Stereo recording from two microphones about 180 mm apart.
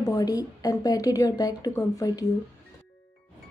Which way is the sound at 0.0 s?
20° left (ahead or behind).